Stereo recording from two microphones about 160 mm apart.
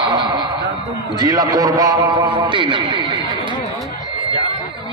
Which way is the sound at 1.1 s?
25° right (ahead or behind).